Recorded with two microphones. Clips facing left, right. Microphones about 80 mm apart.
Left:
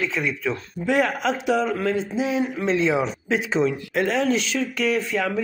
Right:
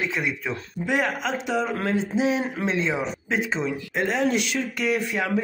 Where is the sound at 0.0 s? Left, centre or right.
Centre.